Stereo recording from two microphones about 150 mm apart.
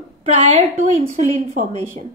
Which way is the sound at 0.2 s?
45° right (ahead or behind).